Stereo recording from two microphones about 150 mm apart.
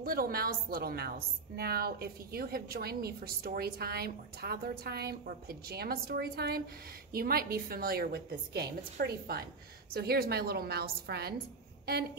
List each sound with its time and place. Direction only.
0.0 s a woman's voice: 80° right